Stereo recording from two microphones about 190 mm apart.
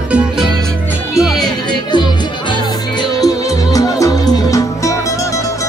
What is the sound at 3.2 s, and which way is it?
Music, 20° left (ahead or behind).